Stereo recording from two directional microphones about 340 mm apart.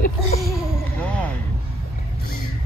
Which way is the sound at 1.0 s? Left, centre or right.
Centre.